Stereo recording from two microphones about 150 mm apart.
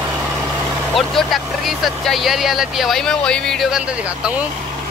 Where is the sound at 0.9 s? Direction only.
Centre (ahead or behind).